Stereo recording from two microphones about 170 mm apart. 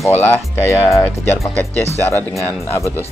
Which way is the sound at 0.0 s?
10° left (ahead or behind).